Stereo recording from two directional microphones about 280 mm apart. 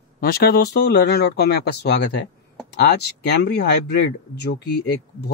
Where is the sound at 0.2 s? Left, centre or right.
Left.